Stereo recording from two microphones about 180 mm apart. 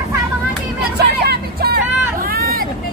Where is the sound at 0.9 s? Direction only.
65° right (ahead or behind).